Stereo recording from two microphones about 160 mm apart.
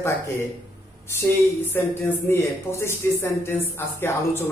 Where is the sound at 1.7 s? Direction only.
15° left (ahead or behind).